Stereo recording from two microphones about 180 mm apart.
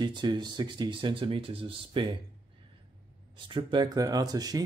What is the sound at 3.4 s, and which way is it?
Speech, 25° right (ahead or behind).